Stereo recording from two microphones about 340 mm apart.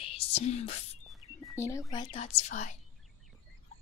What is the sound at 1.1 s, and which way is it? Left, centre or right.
Speech, centre.